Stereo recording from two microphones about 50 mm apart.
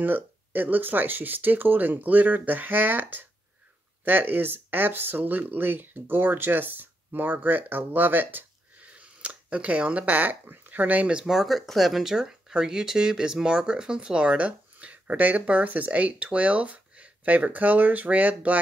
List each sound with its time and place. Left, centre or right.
0.0 s speech: right
8.7 s a sound: right
11.1 s speech: centre; by 18.6 s right